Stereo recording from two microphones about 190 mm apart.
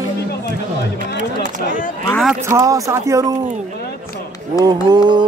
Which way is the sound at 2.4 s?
15° right (ahead or behind).